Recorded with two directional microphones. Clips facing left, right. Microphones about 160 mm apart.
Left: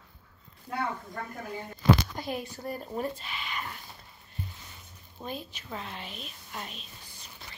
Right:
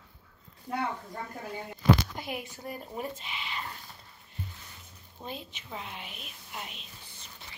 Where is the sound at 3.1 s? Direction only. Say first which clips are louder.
Left 1 dB; 20° right (ahead or behind).